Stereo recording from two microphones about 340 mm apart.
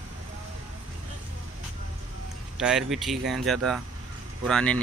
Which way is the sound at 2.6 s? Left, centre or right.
Centre.